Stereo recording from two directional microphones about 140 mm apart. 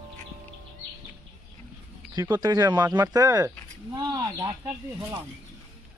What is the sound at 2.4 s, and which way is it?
Speech, 30° right (ahead or behind).